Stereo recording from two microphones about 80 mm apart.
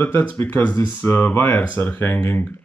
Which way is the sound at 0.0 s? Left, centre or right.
Left.